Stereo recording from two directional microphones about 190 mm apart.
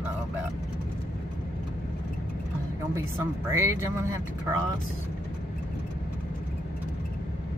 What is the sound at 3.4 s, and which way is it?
Speech, 15° right (ahead or behind).